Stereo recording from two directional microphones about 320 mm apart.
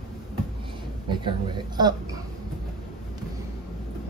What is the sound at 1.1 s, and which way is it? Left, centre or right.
Speech, centre.